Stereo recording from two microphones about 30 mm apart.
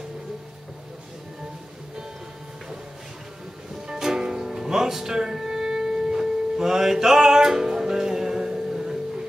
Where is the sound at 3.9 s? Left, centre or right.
Centre.